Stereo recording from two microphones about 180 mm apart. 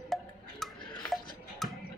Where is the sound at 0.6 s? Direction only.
Centre (ahead or behind).